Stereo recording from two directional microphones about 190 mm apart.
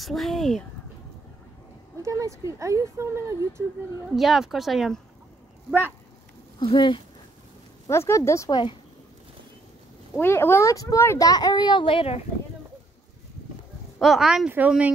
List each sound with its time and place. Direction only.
0.0 s speech: centre (ahead or behind)
2.0 s speech: 15° right (ahead or behind)
4.1 s speech: centre (ahead or behind)
6.6 s a child's voice: 25° left (ahead or behind)
7.8 s a child's voice: 15° left (ahead or behind)
10.1 s a child's voice: 10° left (ahead or behind); by 12.3 s 30° left (ahead or behind)
13.9 s speech: centre (ahead or behind)